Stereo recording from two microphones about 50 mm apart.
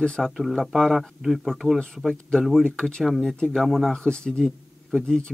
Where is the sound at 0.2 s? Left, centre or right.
Centre.